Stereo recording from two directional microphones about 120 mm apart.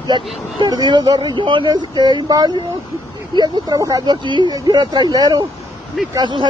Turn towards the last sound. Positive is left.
turn(degrees=-35)  # may be behind; listen again after turning